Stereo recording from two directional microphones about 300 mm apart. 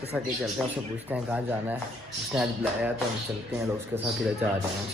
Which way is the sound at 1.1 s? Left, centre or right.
Centre.